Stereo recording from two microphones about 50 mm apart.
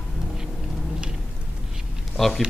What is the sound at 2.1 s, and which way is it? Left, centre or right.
Speech, centre.